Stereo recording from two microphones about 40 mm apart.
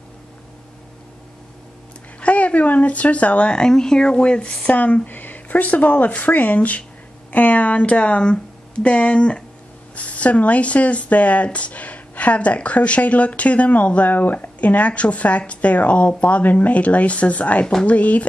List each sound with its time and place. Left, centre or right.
2.1 s speech: left
3.5 s speech: centre
4.6 s speech: left